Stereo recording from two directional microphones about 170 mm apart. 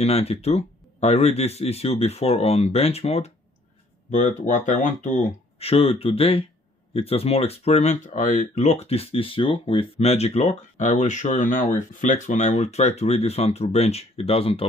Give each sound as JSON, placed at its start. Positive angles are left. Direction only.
{"t": 0.0, "sound": "speech", "side_deg": 35}
{"t": 4.1, "sound": "speech", "side_deg": 45}